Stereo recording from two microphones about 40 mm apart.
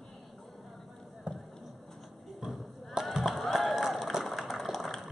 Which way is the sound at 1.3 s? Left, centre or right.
Right.